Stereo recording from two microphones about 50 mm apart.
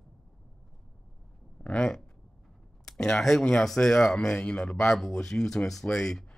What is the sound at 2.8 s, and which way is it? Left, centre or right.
Speech, centre.